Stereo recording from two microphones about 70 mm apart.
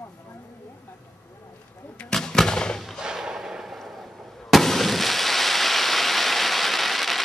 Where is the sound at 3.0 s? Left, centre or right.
Centre.